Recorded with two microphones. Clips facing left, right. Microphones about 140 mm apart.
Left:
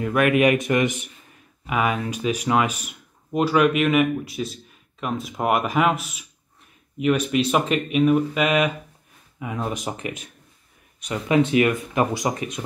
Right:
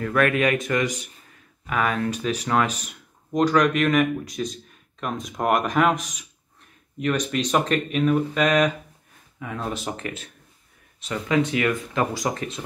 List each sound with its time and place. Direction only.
0.0 s speech: 15° left (ahead or behind)
1.7 s speech: 10° left (ahead or behind)